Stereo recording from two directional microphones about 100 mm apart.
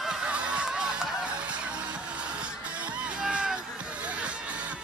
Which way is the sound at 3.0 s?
10° right (ahead or behind).